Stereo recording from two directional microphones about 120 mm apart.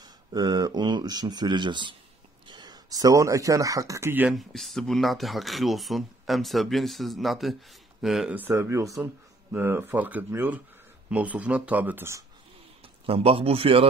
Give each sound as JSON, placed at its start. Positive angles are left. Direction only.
{"t": 0.0, "sound": "speech", "side_deg": -35}
{"t": 4.3, "sound": "speech", "side_deg": 0}
{"t": 8.4, "sound": "speech", "side_deg": -20}
{"t": 12.8, "sound": "a man's voice", "side_deg": -50}